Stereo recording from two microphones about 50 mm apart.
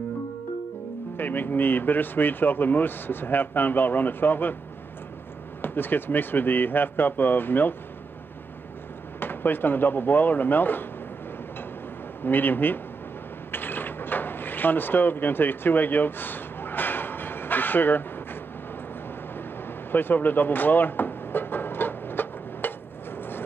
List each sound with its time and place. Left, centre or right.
1.1 s speech: left
5.6 s speech: left
9.2 s speech: left
12.3 s speech: left
13.5 s mechanisms: left
19.9 s music: left
23.1 s vehicle: left